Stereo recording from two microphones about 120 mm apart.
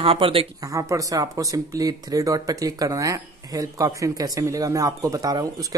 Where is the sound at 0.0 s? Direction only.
50° right (ahead or behind).